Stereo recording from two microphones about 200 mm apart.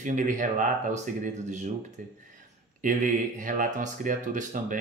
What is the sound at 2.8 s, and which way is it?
Speech, 40° right (ahead or behind).